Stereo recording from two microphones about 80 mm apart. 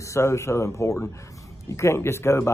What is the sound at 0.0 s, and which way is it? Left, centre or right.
Speech, left.